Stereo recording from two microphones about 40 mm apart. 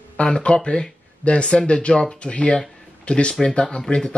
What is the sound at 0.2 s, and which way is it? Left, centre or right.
Speech, left.